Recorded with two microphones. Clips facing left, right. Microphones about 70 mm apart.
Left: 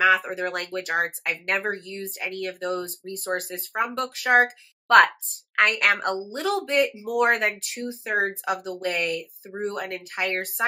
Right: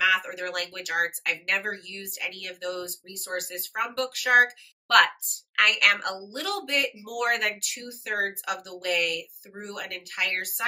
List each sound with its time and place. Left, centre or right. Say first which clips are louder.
0.0 s speech: left 4 dB; left